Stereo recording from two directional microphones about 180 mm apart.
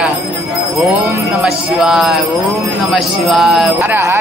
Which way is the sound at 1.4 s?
5° right (ahead or behind).